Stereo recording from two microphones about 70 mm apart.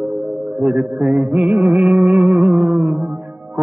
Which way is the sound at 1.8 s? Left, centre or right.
Right.